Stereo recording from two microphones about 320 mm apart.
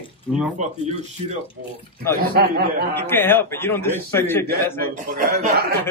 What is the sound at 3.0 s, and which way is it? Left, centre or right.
A man's voice, centre.